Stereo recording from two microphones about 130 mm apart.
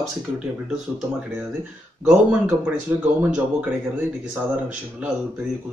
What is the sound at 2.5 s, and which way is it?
Speech, 15° right (ahead or behind).